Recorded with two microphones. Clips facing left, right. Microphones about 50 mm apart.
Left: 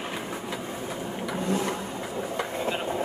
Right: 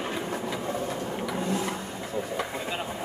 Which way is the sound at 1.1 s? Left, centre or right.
Centre.